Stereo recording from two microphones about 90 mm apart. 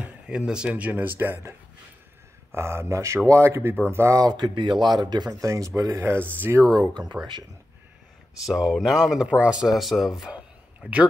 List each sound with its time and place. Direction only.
0.0 s a sound: 15° right (ahead or behind)
0.5 s speech: 10° right (ahead or behind)
2.5 s speech: 30° right (ahead or behind); by 5.4 s 50° right (ahead or behind)
5.4 s speech: 35° right (ahead or behind)
6.7 s speech: 50° right (ahead or behind)
8.5 s speech: centre (ahead or behind)